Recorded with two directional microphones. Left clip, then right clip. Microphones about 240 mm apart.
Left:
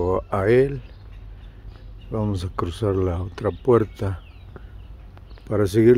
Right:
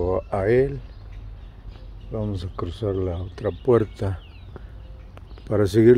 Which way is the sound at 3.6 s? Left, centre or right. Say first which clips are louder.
Left 1 dB; centre.